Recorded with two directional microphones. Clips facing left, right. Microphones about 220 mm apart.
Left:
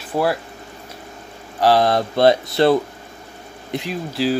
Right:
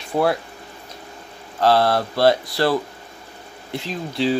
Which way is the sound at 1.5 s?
15° left (ahead or behind).